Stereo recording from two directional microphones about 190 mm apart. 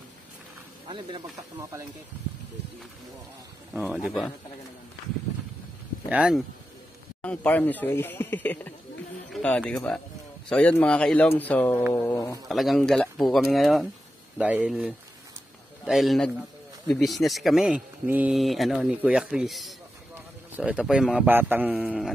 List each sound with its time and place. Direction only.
0.8 s speech: 25° right (ahead or behind)
3.7 s speech: 5° right (ahead or behind)
6.0 s speech: 5° right (ahead or behind)
7.2 s speech: 10° left (ahead or behind)
12.4 s a man's voice: centre (ahead or behind)